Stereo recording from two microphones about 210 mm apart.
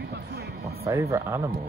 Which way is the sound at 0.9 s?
15° right (ahead or behind).